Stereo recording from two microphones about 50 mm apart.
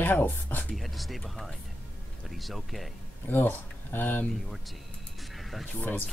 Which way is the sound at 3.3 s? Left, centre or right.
Left.